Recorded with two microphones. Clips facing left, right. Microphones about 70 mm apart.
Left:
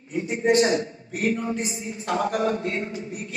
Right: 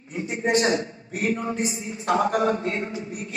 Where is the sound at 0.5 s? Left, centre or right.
Right.